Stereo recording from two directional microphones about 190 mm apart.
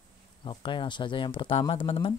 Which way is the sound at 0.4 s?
25° left (ahead or behind).